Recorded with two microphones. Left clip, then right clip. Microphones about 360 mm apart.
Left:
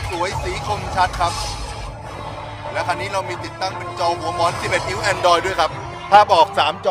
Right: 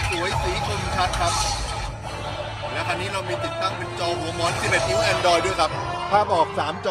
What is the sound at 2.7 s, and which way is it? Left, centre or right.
Speech, centre.